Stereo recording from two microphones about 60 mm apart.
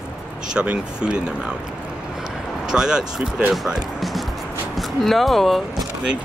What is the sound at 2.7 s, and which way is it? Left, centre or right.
Speech, centre.